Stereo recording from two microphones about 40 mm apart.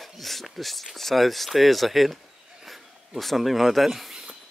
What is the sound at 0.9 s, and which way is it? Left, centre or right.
Speech, centre.